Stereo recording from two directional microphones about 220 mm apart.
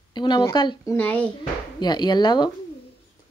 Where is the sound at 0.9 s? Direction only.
5° left (ahead or behind).